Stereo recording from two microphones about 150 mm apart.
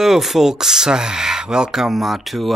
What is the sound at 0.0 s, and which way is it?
Speech, centre (ahead or behind).